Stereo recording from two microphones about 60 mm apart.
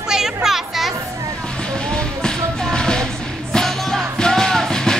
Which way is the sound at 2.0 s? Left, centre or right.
Centre.